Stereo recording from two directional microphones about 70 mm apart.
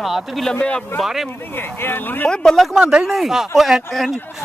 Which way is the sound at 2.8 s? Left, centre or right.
Centre.